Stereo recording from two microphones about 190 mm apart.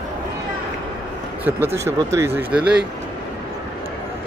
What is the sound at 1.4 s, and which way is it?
Speech, 10° right (ahead or behind).